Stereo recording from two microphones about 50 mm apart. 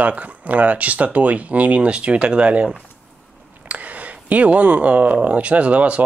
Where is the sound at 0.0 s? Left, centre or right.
Right.